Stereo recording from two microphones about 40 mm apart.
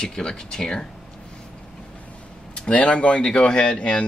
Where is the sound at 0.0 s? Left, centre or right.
Centre.